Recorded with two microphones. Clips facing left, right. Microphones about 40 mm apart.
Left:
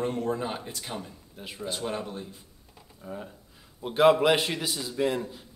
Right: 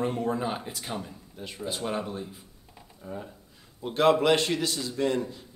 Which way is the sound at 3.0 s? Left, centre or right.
Centre.